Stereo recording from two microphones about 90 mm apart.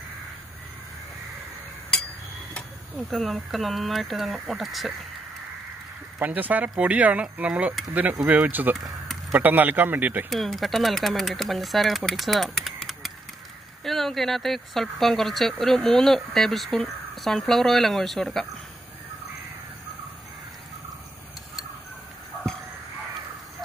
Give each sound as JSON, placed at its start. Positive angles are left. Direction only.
{"t": 1.9, "sound": "a sound", "side_deg": 10}
{"t": 3.0, "sound": "speech", "side_deg": 0}
{"t": 6.1, "sound": "speech", "side_deg": -20}
{"t": 8.7, "sound": "a sound", "side_deg": 0}
{"t": 9.3, "sound": "speech", "side_deg": -20}
{"t": 10.3, "sound": "speech", "side_deg": 0}
{"t": 12.1, "sound": "typing", "side_deg": 0}
{"t": 13.8, "sound": "speech", "side_deg": 5}